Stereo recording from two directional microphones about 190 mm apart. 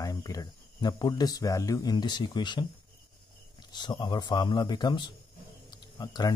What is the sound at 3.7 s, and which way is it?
Speech, 25° left (ahead or behind).